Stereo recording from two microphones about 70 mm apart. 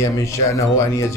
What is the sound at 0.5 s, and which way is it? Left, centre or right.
Speech, left.